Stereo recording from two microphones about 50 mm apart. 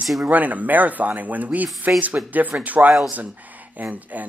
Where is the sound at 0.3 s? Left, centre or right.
Right.